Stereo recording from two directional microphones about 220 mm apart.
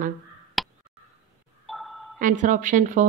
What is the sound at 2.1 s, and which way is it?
Speech, 35° right (ahead or behind).